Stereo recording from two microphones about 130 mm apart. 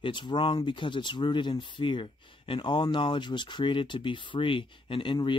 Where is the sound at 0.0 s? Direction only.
35° left (ahead or behind).